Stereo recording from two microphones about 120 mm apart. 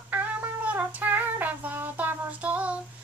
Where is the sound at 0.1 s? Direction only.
15° right (ahead or behind).